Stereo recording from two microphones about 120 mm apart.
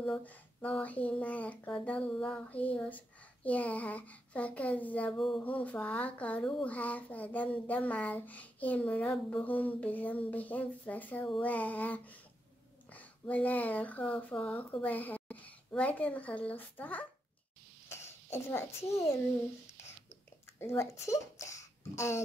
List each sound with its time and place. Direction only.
0.0 s child singing: 10° left (ahead or behind)
5.1 s a sound: centre (ahead or behind)
5.4 s child singing: 10° left (ahead or behind)
14.8 s a woman's voice: 15° left (ahead or behind)
18.3 s a child's voice: 20° left (ahead or behind)
20.5 s speech: 20° left (ahead or behind)